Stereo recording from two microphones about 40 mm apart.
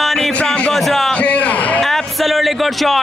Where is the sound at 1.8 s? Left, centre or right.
Centre.